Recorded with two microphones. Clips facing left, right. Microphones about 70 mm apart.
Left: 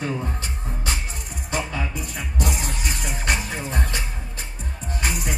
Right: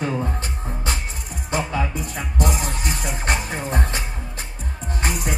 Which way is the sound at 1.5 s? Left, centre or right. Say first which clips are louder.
Right 4 dB; right.